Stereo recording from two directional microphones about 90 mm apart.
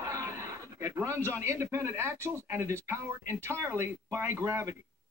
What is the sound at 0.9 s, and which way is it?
Speech, 35° right (ahead or behind).